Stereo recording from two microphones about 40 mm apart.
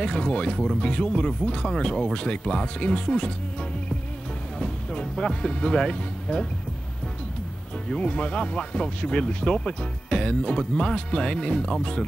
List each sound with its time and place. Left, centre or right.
0.0 s speech: centre
4.6 s speech: left
7.9 s speech: left